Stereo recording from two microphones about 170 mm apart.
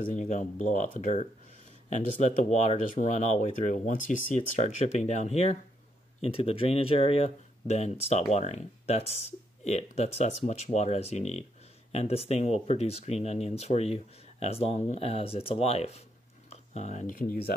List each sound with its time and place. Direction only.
0.1 s speech: 45° left (ahead or behind)